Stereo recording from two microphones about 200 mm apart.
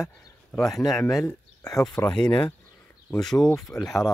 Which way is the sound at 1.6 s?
15° left (ahead or behind).